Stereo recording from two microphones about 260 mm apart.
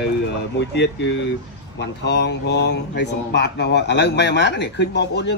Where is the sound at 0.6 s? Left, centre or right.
Left.